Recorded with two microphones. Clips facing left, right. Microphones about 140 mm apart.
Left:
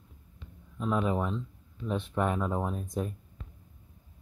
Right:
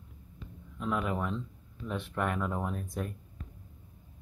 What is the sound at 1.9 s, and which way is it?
Speech, 20° left (ahead or behind).